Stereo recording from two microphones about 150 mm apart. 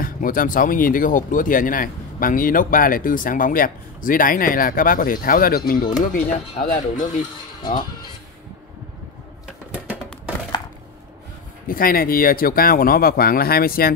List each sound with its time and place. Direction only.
0.0 s speech: 70° left (ahead or behind)
5.8 s speech: 30° left (ahead or behind)
6.1 s speech: 60° left (ahead or behind)
7.6 s speech: 30° left (ahead or behind)
11.6 s speech: 75° left (ahead or behind)